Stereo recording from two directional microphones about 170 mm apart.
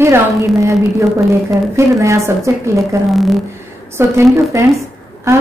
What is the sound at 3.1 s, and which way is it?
Speech, centre (ahead or behind).